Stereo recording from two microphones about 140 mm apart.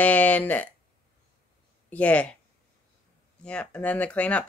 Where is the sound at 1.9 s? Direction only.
10° left (ahead or behind).